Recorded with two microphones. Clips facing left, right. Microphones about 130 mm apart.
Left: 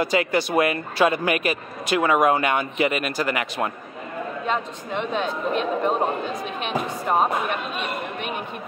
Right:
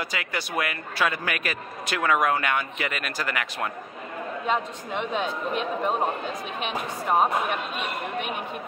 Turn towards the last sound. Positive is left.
turn(degrees=-5)  # may be behind; listen again after turning